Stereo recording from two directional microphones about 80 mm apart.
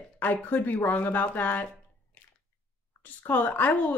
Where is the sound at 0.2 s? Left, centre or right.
Left.